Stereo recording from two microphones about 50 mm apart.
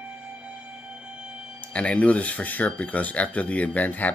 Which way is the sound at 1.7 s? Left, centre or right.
Left.